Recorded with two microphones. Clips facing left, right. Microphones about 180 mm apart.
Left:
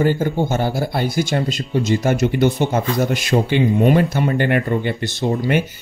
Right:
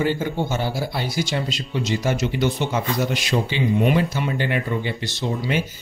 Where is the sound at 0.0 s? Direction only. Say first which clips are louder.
Left 5 dB; 45° left (ahead or behind).